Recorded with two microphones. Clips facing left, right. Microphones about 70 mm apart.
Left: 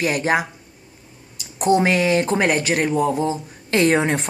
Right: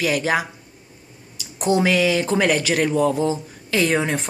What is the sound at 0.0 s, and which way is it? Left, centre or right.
Speech, left.